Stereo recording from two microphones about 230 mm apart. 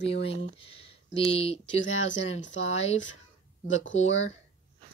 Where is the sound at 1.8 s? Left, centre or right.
Left.